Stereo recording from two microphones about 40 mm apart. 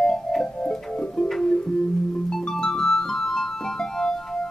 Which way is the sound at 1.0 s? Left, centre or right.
Left.